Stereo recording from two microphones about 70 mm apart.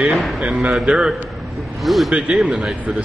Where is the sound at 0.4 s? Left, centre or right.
Centre.